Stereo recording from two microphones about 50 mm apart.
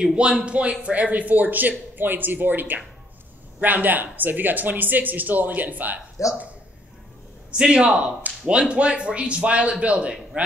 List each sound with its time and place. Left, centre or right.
0.0 s speech: right
6.2 s speech: left
7.5 s a man's voice: centre